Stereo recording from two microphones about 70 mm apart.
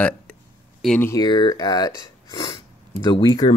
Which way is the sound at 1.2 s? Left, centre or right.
Left.